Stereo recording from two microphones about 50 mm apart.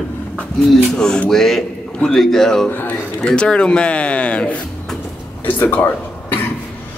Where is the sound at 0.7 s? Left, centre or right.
Centre.